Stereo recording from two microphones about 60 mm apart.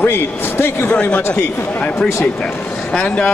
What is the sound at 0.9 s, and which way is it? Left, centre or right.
Speech, left.